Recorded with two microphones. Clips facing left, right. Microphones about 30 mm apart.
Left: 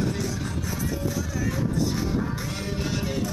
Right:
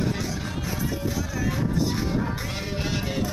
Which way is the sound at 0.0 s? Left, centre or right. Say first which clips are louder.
Even; centre.